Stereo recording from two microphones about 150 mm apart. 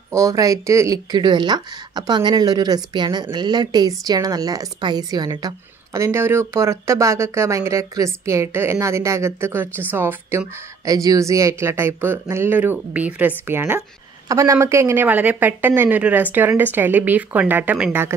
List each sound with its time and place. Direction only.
0.1 s speech: 20° right (ahead or behind)